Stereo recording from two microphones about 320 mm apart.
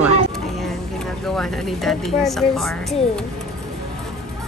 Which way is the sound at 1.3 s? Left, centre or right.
Centre.